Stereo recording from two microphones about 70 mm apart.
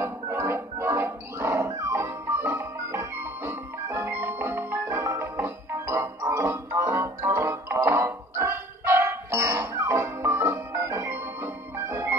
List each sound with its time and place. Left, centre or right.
0.0 s music: right
5.0 s music: right